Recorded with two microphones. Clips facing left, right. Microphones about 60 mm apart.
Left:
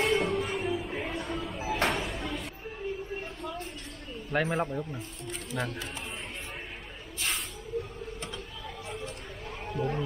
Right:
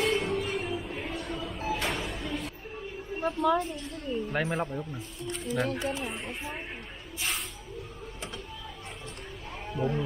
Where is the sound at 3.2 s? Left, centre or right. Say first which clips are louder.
Right 13 dB; right.